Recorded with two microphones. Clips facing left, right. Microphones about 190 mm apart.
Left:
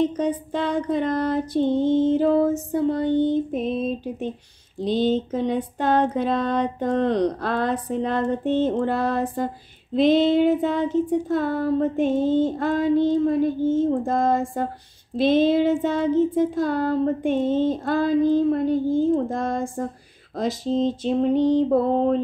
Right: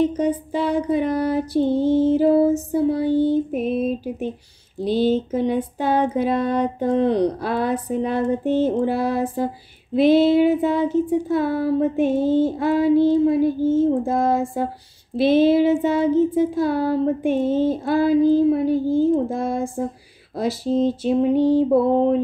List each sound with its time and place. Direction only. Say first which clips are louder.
0.0 s child singing: right 2 dB; 10° right (ahead or behind)